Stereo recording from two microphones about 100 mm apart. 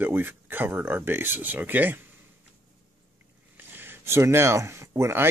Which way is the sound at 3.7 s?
20° right (ahead or behind).